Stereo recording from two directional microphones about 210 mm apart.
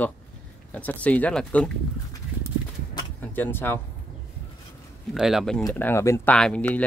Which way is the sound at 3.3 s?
10° left (ahead or behind).